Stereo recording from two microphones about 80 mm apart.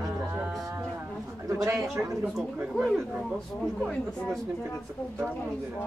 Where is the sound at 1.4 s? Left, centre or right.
Right.